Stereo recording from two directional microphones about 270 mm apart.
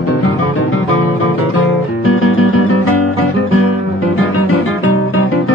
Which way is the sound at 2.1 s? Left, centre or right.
Left.